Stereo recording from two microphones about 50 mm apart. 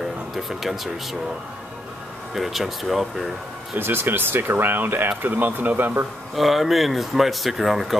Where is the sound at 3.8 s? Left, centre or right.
Right.